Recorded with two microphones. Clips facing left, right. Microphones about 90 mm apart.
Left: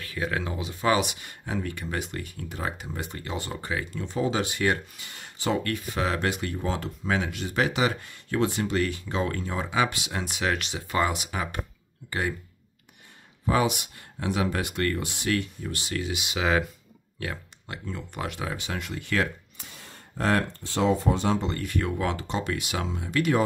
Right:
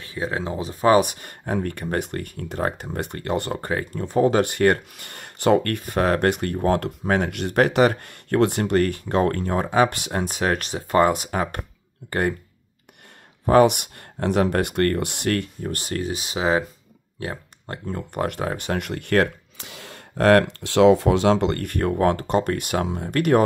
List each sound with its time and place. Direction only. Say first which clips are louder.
0.0 s speech: right 3 dB; 30° right (ahead or behind); by 12.4 s 50° right (ahead or behind)
13.5 s speech: right 9 dB; 55° right (ahead or behind); by 16.6 s 30° right (ahead or behind)
17.2 s a sound: right 3 dB; 30° right (ahead or behind)
17.8 s speech: right 8 dB; 50° right (ahead or behind)